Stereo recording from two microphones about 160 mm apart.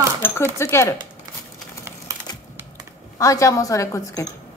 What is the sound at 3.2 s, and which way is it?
A woman's voice, 20° left (ahead or behind).